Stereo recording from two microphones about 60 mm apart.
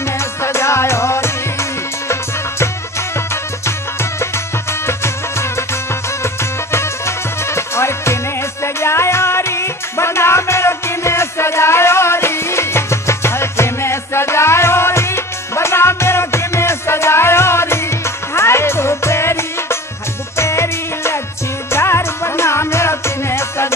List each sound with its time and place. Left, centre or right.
0.2 s music: left
3.6 s music: left